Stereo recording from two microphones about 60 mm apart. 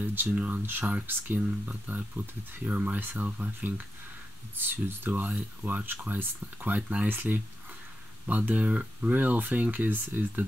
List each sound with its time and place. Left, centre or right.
0.0 s speech: right